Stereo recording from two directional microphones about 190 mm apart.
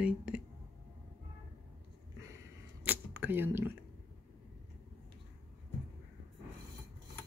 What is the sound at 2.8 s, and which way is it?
Camera, 10° right (ahead or behind).